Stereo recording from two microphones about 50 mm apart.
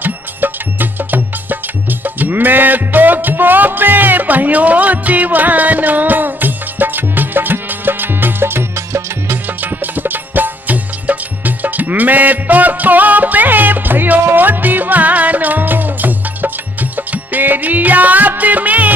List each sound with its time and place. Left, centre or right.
0.0 s music: right
8.7 s music: right
9.6 s music: right